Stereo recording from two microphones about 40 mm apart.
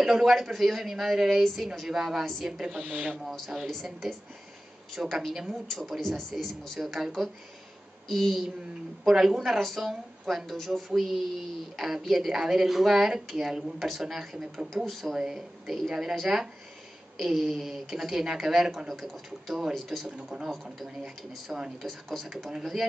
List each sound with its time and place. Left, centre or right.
0.0 s a woman's voice: centre
2.8 s speech: right
3.4 s a woman's voice: centre
8.1 s a woman's voice: centre
9.0 s speech: centre
9.6 s a woman's voice: centre
14.9 s a woman's voice: centre
15.1 s a woman's voice: centre
21.5 s speech: right
21.8 s speech: centre
22.6 s a woman's voice: centre